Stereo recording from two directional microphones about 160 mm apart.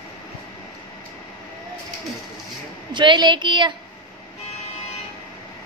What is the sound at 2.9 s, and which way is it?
Speech, 30° right (ahead or behind).